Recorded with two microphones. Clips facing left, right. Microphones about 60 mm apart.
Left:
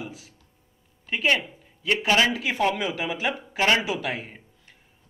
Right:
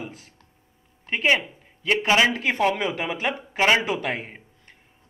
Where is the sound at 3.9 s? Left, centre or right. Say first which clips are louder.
Right 2 dB; right.